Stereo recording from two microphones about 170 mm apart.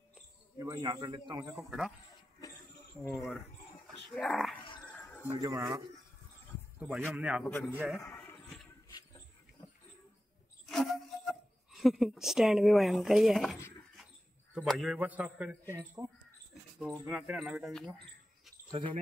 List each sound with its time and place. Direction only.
0.6 s a man's voice: 20° right (ahead or behind)
1.6 s speech: centre (ahead or behind)
3.0 s speech: 5° left (ahead or behind)
4.9 s a sound: 10° left (ahead or behind)
5.4 s a man's voice: 20° right (ahead or behind)
7.1 s a man's voice: 10° right (ahead or behind)
7.4 s a man's voice: 10° left (ahead or behind)
8.0 s a sound: 15° left (ahead or behind)
8.8 s dog: 20° left (ahead or behind)
10.7 s a sound: centre (ahead or behind)
14.5 s a man's voice: centre (ahead or behind); by 16.1 s 15° right (ahead or behind)
17.1 s speech: 5° right (ahead or behind)
18.7 s speech: 30° right (ahead or behind)